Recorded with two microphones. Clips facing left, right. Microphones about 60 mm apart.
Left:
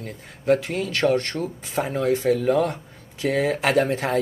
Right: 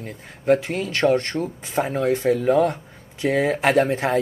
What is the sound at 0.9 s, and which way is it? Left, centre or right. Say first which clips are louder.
Speech: right 2 dB; centre.